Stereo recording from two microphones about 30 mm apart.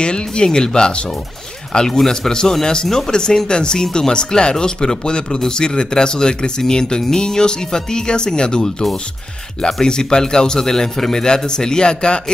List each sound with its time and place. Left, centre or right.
0.0 s speech: left
1.9 s speech: centre
9.8 s speech: left